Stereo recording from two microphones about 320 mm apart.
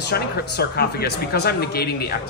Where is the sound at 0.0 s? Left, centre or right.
Left.